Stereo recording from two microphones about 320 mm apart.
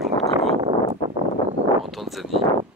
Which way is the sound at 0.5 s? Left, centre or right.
Centre.